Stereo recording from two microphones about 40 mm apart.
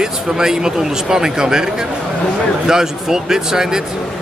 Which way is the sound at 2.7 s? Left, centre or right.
Centre.